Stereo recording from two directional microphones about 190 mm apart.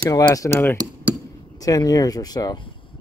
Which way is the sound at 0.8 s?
20° right (ahead or behind).